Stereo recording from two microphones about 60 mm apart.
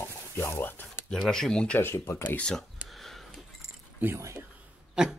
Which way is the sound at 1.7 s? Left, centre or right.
Left.